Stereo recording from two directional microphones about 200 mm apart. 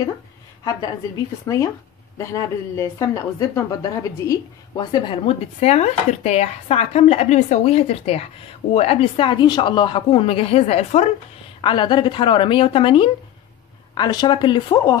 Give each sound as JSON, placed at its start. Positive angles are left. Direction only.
{"t": 1.4, "sound": "a woman's voice", "side_deg": 15}